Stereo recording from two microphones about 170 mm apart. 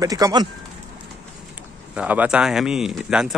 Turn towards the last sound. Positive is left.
turn(degrees=0)  # may be behind; listen again after turning